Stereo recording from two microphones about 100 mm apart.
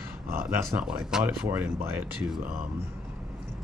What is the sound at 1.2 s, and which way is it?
Speech, 20° right (ahead or behind).